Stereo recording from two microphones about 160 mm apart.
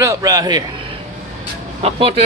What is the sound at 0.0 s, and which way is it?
Speech, 20° right (ahead or behind).